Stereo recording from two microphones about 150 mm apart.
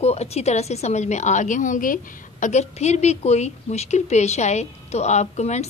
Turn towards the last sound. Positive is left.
turn(degrees=50)  # may be behind; listen again after turning